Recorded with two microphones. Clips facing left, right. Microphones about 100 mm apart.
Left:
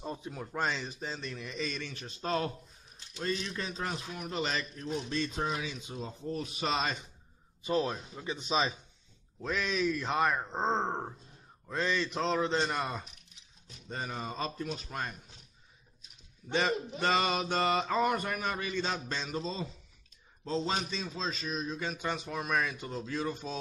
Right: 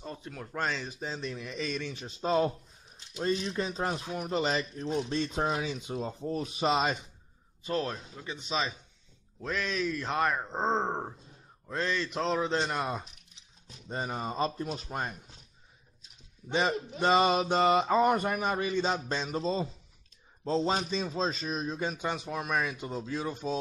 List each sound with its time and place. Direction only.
0.0 s a sound: 15° left (ahead or behind)
0.5 s a man's voice: 5° left (ahead or behind)
0.8 s a man's voice: 5° right (ahead or behind)
1.9 s a man's voice: 15° right (ahead or behind); by 6.5 s 40° right (ahead or behind)
6.6 s a man's voice: 20° right (ahead or behind)
7.6 s speech: 10° left (ahead or behind)
9.4 s a man's voice: 5° left (ahead or behind); by 11.1 s 10° right (ahead or behind)
11.6 s a man's voice: centre (ahead or behind)
13.8 s a man's voice: 30° right (ahead or behind)
17.0 s a man's voice: 25° right (ahead or behind)
22.0 s speech: 10° right (ahead or behind)